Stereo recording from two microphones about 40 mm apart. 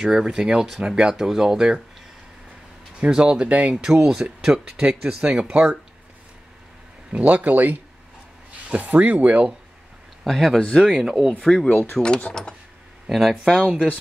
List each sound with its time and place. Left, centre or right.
0.0 s speech: centre
3.1 s speech: right
3.4 s speech: right
3.7 s speech: centre
4.8 s speech: right
7.1 s speech: right
8.7 s speech: right
10.2 s speech: centre
10.6 s speech: left
10.9 s speech: centre
11.4 s speech: centre
13.1 s speech: centre
13.4 s speech: right